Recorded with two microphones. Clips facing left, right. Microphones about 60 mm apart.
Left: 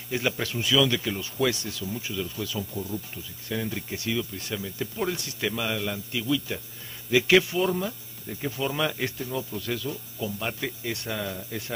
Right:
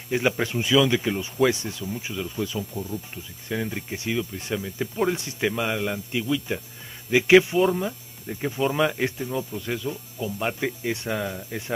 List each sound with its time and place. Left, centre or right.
0.1 s speech: right
2.7 s speech: centre